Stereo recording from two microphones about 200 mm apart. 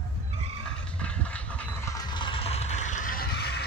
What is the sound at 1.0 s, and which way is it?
Vehicle, 5° left (ahead or behind).